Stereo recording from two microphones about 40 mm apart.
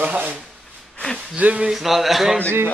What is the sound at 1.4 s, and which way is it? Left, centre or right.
Speech, right.